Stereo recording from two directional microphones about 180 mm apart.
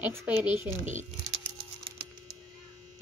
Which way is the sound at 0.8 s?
40° right (ahead or behind).